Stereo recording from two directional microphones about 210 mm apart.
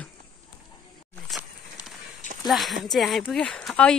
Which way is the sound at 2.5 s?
Centre (ahead or behind).